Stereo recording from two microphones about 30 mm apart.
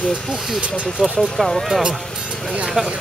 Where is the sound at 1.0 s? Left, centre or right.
Centre.